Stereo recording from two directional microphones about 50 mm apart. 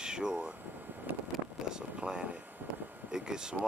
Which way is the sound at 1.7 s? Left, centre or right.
Centre.